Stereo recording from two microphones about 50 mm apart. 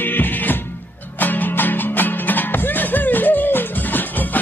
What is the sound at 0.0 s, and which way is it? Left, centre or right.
Music, left.